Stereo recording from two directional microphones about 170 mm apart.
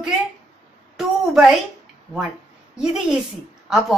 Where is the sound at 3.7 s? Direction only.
Centre (ahead or behind).